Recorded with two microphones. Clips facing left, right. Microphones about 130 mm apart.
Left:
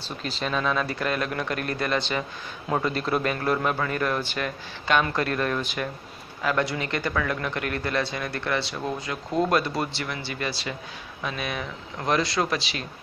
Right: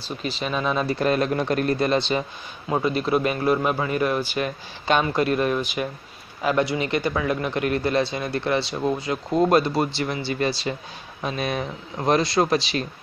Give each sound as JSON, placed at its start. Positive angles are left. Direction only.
{"t": 0.2, "sound": "speech", "side_deg": -5}
{"t": 2.7, "sound": "a man's voice", "side_deg": -10}
{"t": 4.4, "sound": "a man's voice", "side_deg": -25}